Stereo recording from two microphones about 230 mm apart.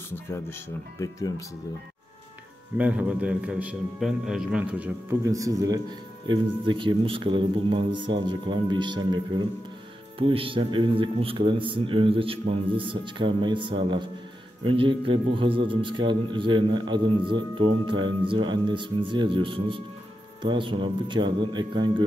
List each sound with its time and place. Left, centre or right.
0.3 s speech: centre
2.8 s a man's voice: centre